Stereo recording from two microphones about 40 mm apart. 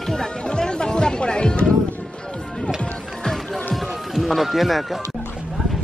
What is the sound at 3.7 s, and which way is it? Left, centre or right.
Music, centre.